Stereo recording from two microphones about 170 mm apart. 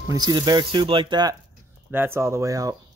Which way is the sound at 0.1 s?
25° right (ahead or behind).